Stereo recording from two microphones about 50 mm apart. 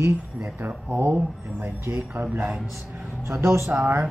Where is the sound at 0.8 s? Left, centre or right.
Right.